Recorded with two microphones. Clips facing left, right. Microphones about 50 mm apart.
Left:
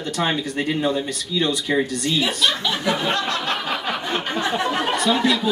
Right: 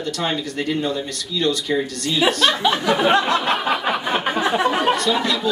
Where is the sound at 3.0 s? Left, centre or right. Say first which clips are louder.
Right 6 dB; centre.